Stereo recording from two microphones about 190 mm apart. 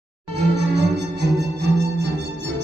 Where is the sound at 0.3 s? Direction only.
65° right (ahead or behind).